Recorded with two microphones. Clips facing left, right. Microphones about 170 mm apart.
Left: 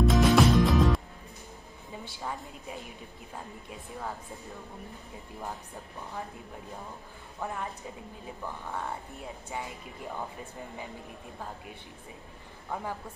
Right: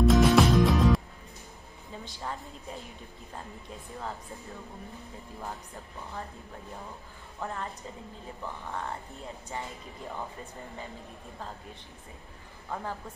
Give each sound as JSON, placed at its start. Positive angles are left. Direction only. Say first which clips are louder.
{"t": 0.0, "sound": "music", "louder": "right 1 dB", "side_deg": 0}
{"t": 2.2, "sound": "speech", "louder": "even", "side_deg": 0}
{"t": 7.4, "sound": "speech", "louder": "left 1 dB", "side_deg": 10}
{"t": 8.6, "sound": "speech", "louder": "even", "side_deg": 0}
{"t": 9.5, "sound": "speech", "louder": "left 1 dB", "side_deg": 15}